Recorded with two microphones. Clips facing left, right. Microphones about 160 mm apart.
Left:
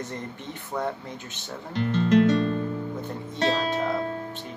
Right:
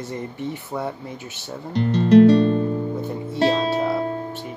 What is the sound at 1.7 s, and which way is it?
Music, 35° right (ahead or behind).